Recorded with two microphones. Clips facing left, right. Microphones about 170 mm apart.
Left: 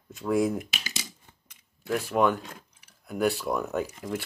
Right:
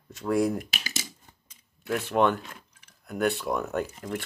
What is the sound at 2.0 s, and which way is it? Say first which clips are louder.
Speech: right 1 dB; centre (ahead or behind).